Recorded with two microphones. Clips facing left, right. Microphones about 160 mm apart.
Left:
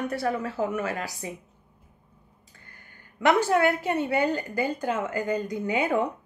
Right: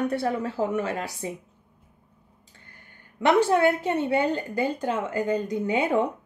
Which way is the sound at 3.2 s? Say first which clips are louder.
Right 2 dB; 25° right (ahead or behind).